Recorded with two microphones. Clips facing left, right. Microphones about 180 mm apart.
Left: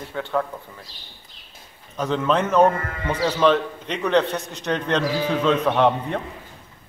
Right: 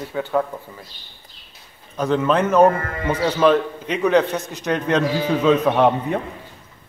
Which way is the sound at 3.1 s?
15° right (ahead or behind).